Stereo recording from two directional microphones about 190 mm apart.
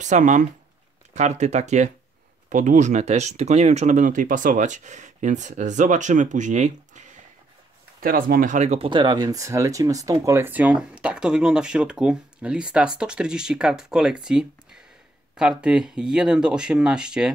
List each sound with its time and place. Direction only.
0.0 s speech: 40° right (ahead or behind)
8.0 s speech: 50° right (ahead or behind); by 17.3 s 5° right (ahead or behind)